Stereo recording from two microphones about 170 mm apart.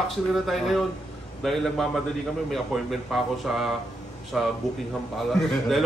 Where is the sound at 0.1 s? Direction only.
Centre (ahead or behind).